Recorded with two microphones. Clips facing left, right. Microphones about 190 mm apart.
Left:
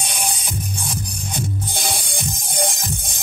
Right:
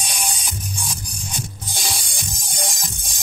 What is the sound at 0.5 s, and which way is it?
Music, 55° left (ahead or behind).